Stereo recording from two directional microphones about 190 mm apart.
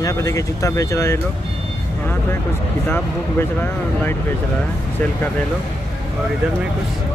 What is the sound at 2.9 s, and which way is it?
Speech, 10° left (ahead or behind).